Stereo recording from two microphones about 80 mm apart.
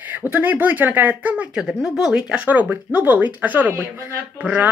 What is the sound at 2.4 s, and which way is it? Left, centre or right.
Speech, right.